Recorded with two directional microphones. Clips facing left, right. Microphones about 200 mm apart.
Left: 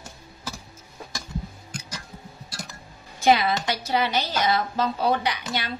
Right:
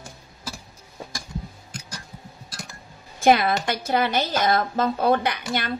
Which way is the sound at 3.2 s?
50° right (ahead or behind).